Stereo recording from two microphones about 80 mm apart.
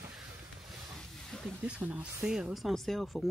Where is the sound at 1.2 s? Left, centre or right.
Centre.